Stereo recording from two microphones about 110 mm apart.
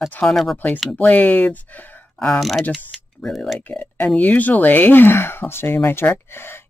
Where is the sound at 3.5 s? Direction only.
15° left (ahead or behind).